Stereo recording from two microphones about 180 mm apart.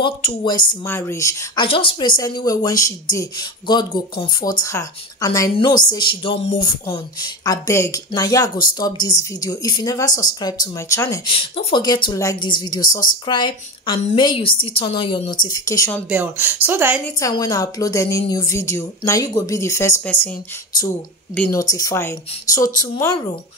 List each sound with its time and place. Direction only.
0.0 s speech: 25° left (ahead or behind)
0.8 s speech: 15° left (ahead or behind)
11.2 s speech: 30° left (ahead or behind)
16.1 s speech: 10° right (ahead or behind)
17.2 s a woman's voice: 20° left (ahead or behind)